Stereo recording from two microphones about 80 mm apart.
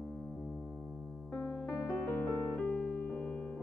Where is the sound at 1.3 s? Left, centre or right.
Centre.